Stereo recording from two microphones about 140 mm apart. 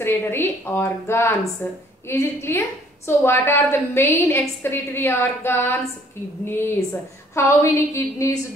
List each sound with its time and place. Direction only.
0.0 s a woman's voice: 15° left (ahead or behind)